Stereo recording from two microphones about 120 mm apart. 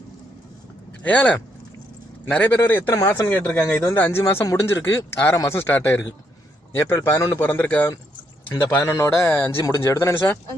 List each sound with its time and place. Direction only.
1.0 s a man's voice: 10° left (ahead or behind)